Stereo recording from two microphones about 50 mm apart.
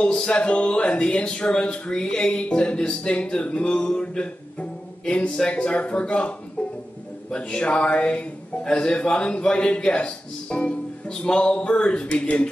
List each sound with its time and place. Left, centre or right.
0.0 s speech: centre